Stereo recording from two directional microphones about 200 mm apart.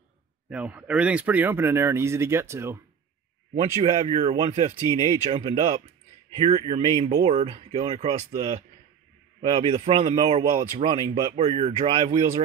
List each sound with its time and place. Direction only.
0.5 s speech: 5° right (ahead or behind)
3.5 s a man's voice: 30° right (ahead or behind)